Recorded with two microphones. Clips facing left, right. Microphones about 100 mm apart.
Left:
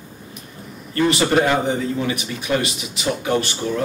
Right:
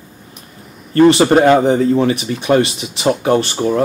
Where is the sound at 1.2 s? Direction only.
45° right (ahead or behind).